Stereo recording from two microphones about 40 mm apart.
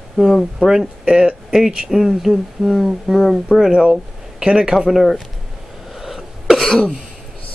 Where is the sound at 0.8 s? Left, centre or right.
Right; by 3.1 s centre.